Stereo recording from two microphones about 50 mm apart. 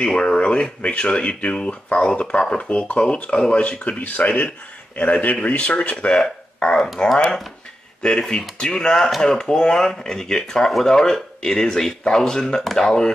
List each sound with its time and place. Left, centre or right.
0.0 s speech: centre
4.2 s speech: left; by 6.9 s centre
8.0 s speech: centre